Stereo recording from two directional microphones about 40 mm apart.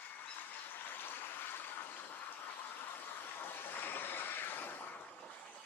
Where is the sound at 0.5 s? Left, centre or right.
Left.